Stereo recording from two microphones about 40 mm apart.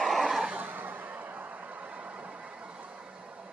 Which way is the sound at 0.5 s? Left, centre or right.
Right.